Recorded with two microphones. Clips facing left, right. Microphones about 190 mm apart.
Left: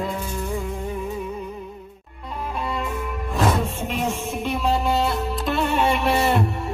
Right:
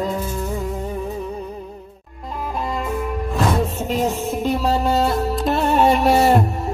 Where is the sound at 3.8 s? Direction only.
35° right (ahead or behind).